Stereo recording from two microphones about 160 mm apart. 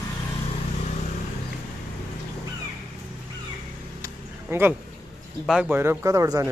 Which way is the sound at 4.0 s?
15° right (ahead or behind).